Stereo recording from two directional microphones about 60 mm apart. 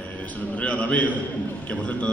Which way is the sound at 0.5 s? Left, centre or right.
Left.